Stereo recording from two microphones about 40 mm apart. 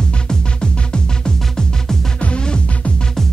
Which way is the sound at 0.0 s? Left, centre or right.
Left.